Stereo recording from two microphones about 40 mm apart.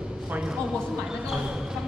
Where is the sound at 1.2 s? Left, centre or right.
Centre.